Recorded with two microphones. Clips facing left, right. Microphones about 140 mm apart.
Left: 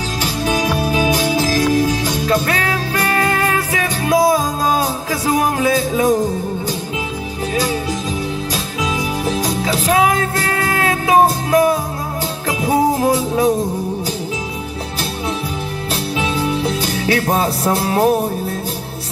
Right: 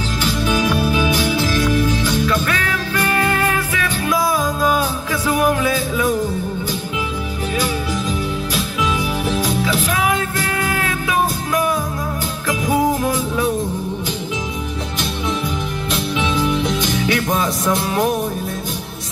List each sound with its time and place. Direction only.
0.2 s music: 35° left (ahead or behind)
8.5 s music: 35° left (ahead or behind)
15.9 s music: 35° left (ahead or behind)